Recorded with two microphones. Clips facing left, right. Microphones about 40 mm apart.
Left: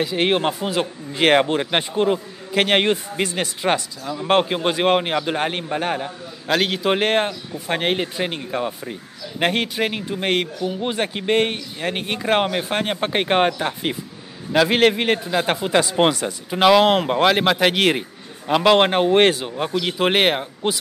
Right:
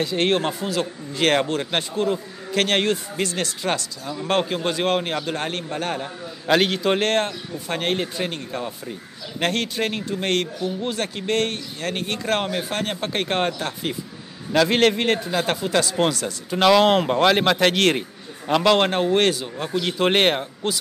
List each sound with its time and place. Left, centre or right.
0.0 s speech: centre
6.4 s a man's voice: centre; by 19.8 s left
19.8 s a man's voice: centre